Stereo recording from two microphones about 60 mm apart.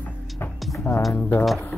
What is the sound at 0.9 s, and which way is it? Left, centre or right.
Speech, centre.